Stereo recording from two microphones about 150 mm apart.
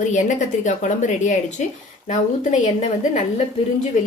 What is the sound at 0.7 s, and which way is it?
Speech, 55° left (ahead or behind).